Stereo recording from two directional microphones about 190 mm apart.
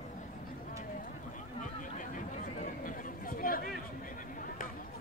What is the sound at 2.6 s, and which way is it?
Chatter, 45° left (ahead or behind).